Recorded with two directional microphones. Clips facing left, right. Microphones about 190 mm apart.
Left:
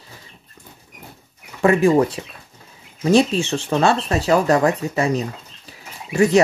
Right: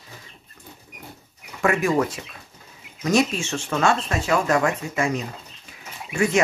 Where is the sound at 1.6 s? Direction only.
30° left (ahead or behind).